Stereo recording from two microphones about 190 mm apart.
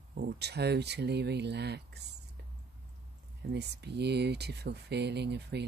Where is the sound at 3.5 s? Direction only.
60° right (ahead or behind).